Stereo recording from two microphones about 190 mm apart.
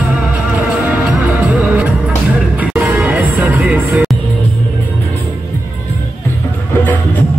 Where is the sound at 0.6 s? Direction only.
5° right (ahead or behind).